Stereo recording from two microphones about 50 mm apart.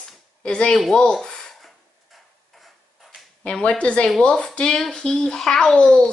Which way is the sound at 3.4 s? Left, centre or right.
Left.